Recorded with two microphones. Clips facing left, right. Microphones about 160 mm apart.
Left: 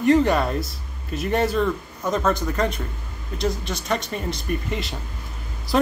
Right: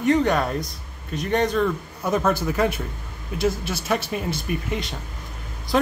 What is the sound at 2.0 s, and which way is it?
Speech, 10° right (ahead or behind).